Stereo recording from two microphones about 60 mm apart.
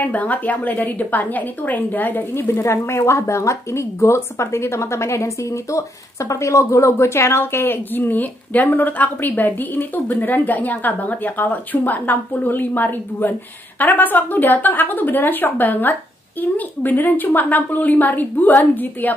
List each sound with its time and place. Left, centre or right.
0.0 s a woman's voice: left
2.3 s speech: left